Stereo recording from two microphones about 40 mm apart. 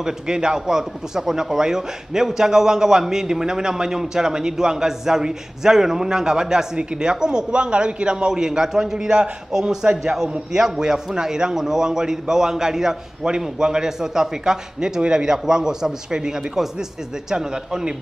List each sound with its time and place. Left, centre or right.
0.0 s a man's voice: centre